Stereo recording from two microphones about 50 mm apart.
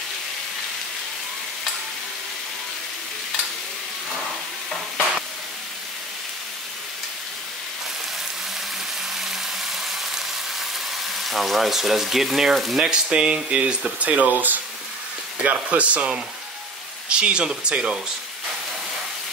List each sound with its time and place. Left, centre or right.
9.1 s frying: centre
11.2 s speech: centre
12.7 s speech: centre